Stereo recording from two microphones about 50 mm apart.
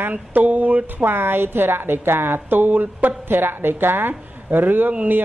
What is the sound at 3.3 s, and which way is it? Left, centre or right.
A woman's voice, right.